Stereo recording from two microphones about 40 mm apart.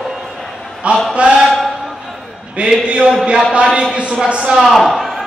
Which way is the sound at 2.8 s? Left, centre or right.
Right.